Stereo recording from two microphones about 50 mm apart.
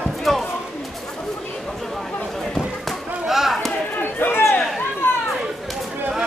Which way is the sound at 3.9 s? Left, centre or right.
Left.